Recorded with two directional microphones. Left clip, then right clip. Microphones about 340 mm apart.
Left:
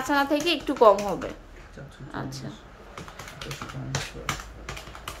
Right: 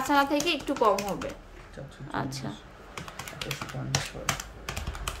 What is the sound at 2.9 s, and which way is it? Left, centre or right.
Typing, right.